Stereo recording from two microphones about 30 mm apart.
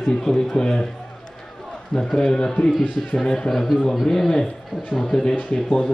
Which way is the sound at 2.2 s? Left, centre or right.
Left.